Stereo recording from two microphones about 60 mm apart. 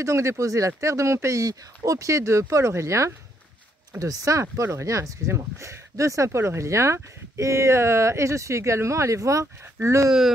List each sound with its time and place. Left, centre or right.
0.0 s speech: right
4.0 s speech: right